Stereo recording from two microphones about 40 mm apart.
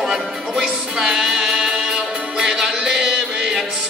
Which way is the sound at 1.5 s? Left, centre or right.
Right.